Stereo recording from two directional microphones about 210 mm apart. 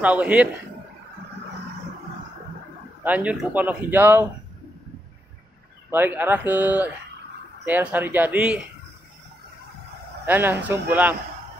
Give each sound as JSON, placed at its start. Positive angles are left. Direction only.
{"t": 0.0, "sound": "speech", "side_deg": -5}
{"t": 3.0, "sound": "speech", "side_deg": -5}
{"t": 5.9, "sound": "speech", "side_deg": -10}
{"t": 10.2, "sound": "speech", "side_deg": -10}